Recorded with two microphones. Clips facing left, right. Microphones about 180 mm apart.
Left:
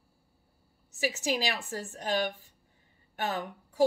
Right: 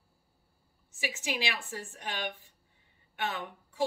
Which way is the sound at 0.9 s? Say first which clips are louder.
Left 5 dB; 40° left (ahead or behind).